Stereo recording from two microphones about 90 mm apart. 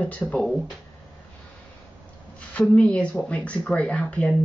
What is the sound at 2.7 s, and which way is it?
A woman's voice, 15° left (ahead or behind).